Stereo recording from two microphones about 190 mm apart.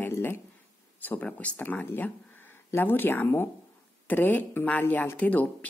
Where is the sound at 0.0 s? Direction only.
10° left (ahead or behind).